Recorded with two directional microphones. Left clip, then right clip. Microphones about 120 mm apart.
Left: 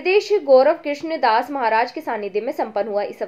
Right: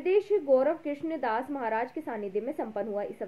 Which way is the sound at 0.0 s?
30° left (ahead or behind).